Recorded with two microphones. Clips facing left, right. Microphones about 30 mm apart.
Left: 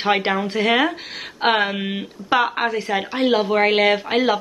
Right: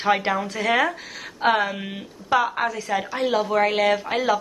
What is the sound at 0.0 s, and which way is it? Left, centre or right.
Speech, left.